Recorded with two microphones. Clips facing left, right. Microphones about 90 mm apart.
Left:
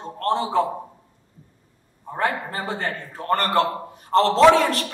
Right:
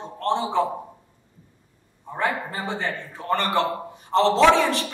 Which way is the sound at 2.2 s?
Centre (ahead or behind).